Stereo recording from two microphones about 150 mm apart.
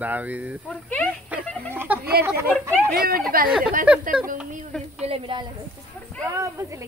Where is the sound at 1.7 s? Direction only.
15° right (ahead or behind).